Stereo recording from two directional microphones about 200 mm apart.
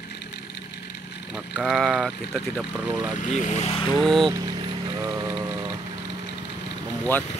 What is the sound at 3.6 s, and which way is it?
Speech, 25° left (ahead or behind).